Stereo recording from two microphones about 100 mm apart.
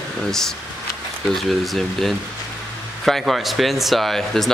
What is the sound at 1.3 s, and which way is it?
Speech, centre (ahead or behind).